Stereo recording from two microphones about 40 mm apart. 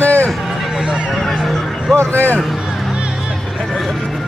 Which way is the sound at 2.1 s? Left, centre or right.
Left.